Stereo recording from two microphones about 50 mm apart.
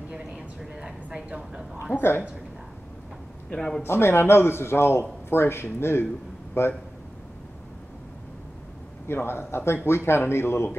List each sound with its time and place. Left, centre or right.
0.7 s a sound: centre
2.0 s speech: left
3.5 s a man's voice: centre
3.8 s a man's voice: left
9.0 s speech: left